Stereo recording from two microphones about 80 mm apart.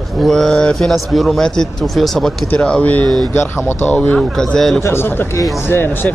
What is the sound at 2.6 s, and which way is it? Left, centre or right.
A man's voice, centre.